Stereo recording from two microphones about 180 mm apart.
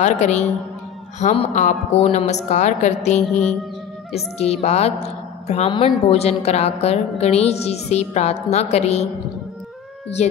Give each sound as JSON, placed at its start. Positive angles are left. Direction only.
{"t": 0.0, "sound": "a woman's voice", "side_deg": 40}